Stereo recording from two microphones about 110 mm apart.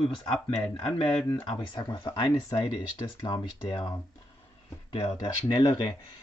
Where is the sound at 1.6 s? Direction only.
45° left (ahead or behind).